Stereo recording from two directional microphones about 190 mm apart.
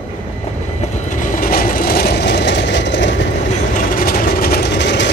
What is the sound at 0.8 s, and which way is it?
Train, 40° left (ahead or behind).